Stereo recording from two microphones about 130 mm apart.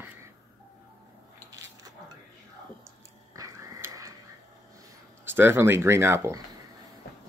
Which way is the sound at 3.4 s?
25° right (ahead or behind).